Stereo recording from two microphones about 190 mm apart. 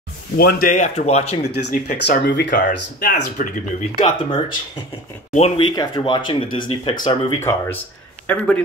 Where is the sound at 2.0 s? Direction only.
65° left (ahead or behind).